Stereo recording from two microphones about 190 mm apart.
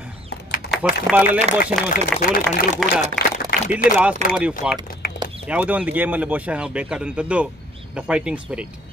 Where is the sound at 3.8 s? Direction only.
50° left (ahead or behind).